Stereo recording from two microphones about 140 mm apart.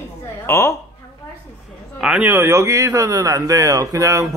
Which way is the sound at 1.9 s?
5° right (ahead or behind).